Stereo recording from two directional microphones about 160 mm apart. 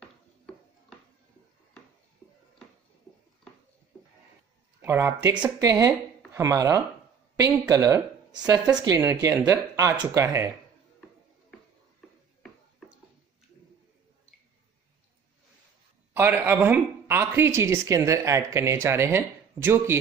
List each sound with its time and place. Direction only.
4.8 s speech: 15° right (ahead or behind)
16.1 s speech: 10° right (ahead or behind)